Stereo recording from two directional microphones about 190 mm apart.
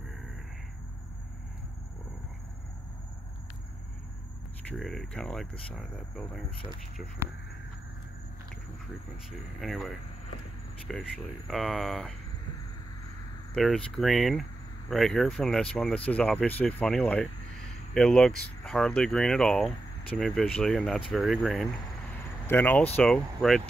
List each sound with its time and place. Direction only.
4.6 s speech: centre (ahead or behind)
9.6 s speech: centre (ahead or behind)
13.6 s speech: centre (ahead or behind)